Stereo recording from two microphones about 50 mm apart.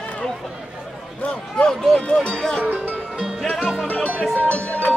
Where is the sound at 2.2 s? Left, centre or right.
Centre.